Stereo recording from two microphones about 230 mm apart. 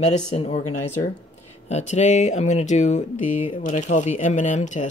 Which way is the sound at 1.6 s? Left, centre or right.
Left.